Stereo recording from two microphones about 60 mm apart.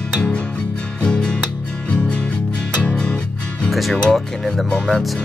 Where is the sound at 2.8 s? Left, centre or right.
Centre.